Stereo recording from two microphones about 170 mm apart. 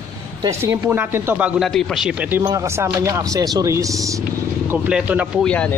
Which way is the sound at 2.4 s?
20° right (ahead or behind).